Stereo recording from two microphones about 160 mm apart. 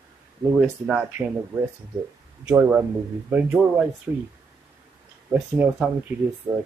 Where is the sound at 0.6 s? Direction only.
10° right (ahead or behind).